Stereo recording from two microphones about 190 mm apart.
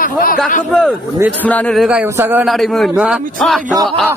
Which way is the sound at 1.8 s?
10° right (ahead or behind).